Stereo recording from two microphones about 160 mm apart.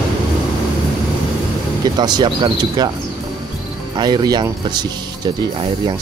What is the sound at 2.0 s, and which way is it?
Speech, 25° right (ahead or behind).